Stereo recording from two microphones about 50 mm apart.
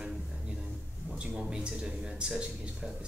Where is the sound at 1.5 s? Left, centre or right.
Centre.